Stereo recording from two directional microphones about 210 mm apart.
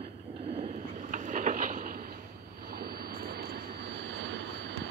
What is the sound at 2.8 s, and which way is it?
Vehicle, 50° right (ahead or behind).